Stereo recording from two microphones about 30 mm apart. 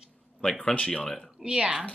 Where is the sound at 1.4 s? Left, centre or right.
Right.